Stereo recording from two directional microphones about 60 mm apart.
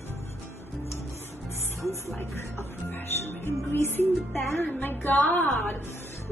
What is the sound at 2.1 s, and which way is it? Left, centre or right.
Speech, left.